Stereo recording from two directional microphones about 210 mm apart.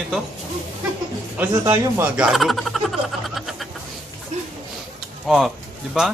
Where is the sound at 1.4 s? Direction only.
5° right (ahead or behind).